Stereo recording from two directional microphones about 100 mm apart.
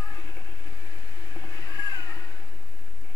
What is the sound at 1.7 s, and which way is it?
Vehicle, 40° left (ahead or behind).